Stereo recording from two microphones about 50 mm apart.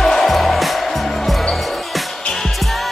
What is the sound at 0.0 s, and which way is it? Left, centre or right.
Music, centre.